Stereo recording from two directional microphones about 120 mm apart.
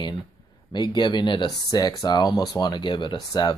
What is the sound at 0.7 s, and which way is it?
Speech, 40° left (ahead or behind).